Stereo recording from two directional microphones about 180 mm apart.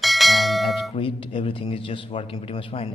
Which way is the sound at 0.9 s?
30° left (ahead or behind).